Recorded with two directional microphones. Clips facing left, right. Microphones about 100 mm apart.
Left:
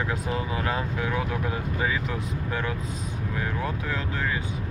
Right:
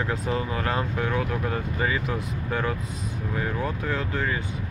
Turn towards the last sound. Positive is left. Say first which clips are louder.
# right 2 dB
turn(degrees=0)  # may be behind; listen again after turning